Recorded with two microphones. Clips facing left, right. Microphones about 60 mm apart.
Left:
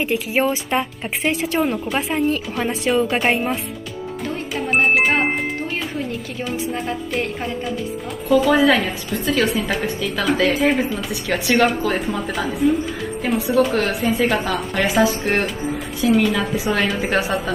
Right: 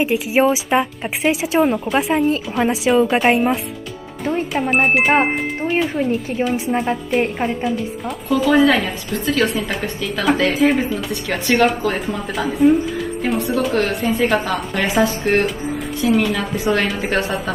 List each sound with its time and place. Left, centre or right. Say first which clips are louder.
0.0 s speech: right 4 dB; centre
4.2 s music: right 7 dB; centre
4.6 s a woman's voice: even; centre
7.2 s a woman's voice: right 6 dB; right
8.3 s a woman's voice: even; centre